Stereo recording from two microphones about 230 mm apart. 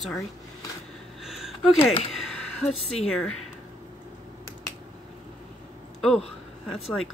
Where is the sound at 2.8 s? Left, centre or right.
Left.